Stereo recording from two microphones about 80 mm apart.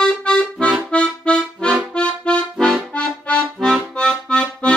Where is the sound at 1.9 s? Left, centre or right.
Centre.